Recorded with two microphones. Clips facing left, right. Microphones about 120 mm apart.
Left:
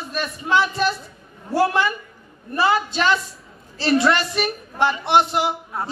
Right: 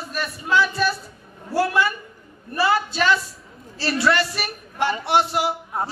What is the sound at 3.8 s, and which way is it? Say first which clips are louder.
A woman's voice: left 3 dB; 20° left (ahead or behind).